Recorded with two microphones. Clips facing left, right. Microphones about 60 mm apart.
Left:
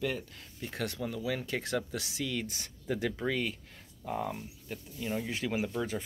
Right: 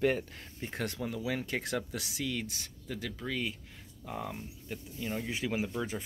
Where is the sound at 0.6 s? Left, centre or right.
Centre.